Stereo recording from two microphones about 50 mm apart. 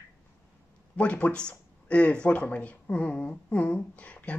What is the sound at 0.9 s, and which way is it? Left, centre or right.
Speech, left.